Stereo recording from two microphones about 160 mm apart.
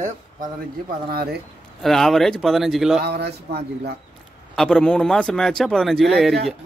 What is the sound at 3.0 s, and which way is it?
Speech, 90° right.